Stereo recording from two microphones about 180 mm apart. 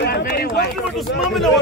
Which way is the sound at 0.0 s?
60° left (ahead or behind).